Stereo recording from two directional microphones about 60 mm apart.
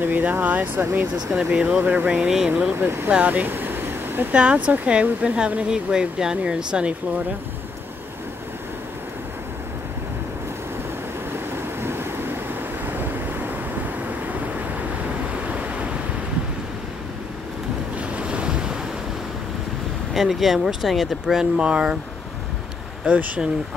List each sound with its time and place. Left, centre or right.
0.0 s speech: right
1.3 s speech: centre
3.1 s a sound: right
4.3 s speech: right
11.5 s vehicle: right
15.4 s waves: right
18.1 s waves: centre
20.2 s speech: centre
23.0 s speech: right